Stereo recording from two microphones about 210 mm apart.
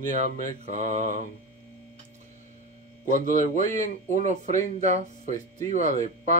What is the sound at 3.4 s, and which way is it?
Speech, 35° right (ahead or behind).